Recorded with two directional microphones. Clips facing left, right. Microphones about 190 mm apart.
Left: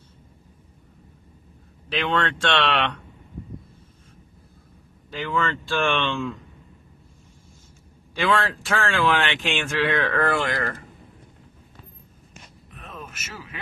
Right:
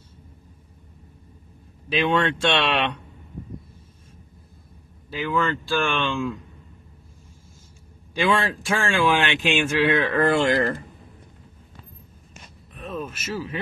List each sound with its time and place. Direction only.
1.9 s a man's voice: 10° right (ahead or behind)
5.1 s a man's voice: centre (ahead or behind)
8.1 s a man's voice: 15° right (ahead or behind)
12.7 s a sound: 30° right (ahead or behind)